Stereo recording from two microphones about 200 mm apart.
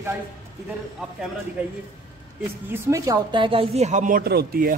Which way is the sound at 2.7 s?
15° right (ahead or behind).